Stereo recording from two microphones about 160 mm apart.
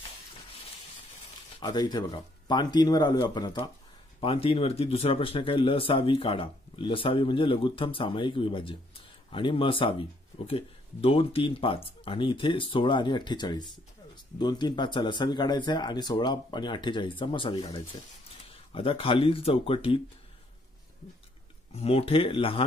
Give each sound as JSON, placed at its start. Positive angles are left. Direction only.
{"t": 1.6, "sound": "speech", "side_deg": 25}
{"t": 21.7, "sound": "speech", "side_deg": 40}